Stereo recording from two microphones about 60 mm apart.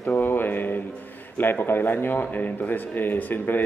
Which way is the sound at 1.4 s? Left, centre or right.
Left.